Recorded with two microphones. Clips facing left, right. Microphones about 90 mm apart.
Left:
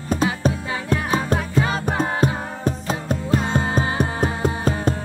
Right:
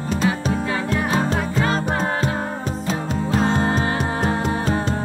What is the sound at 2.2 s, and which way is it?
Music, 45° left (ahead or behind).